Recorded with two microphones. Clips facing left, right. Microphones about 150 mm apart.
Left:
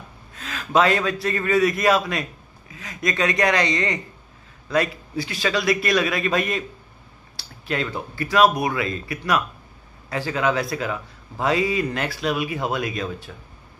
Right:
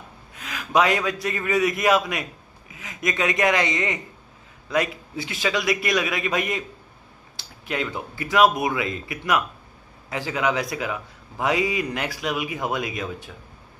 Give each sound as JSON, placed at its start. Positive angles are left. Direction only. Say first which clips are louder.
{"t": 0.3, "sound": "a man's voice", "louder": "left 2 dB", "side_deg": -15}